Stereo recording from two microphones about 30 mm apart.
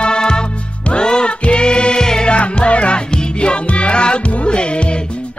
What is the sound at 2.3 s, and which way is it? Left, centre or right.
Music, left.